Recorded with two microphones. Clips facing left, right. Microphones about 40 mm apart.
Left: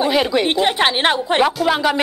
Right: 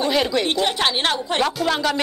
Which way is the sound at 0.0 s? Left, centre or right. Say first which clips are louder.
Left 3 dB; centre.